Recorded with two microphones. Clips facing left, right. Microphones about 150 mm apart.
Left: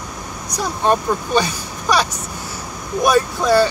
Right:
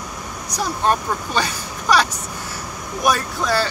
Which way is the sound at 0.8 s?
15° left (ahead or behind).